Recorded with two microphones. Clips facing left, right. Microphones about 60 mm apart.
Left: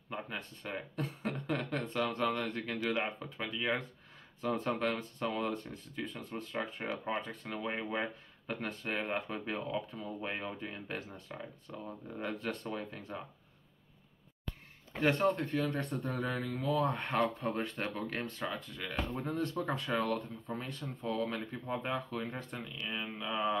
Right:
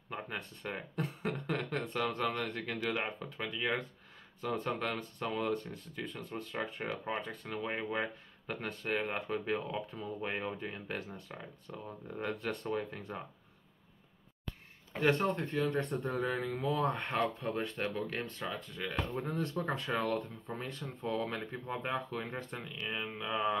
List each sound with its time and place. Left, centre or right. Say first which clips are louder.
0.1 s speech: even; centre
15.1 s speech: left 2 dB; centre
17.6 s speech: right 1 dB; centre